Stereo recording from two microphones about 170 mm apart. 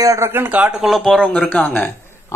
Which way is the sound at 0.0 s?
15° right (ahead or behind).